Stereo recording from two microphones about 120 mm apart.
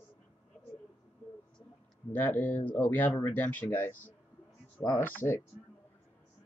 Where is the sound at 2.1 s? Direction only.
15° left (ahead or behind).